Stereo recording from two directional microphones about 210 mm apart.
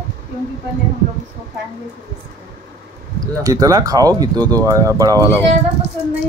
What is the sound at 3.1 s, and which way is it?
Speech, 15° right (ahead or behind).